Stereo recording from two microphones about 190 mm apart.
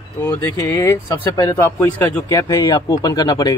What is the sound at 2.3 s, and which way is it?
Speech, 20° left (ahead or behind).